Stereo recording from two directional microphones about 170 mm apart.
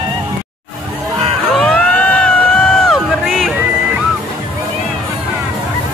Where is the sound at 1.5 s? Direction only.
5° left (ahead or behind).